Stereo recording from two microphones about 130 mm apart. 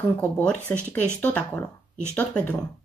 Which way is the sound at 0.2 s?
10° left (ahead or behind).